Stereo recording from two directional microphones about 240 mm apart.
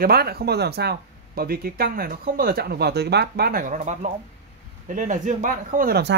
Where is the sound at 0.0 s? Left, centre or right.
Right.